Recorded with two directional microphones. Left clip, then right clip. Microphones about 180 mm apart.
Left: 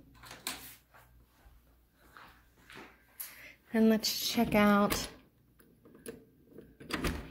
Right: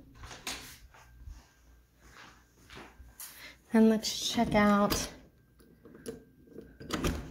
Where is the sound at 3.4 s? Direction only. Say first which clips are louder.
Right 4 dB; 10° right (ahead or behind).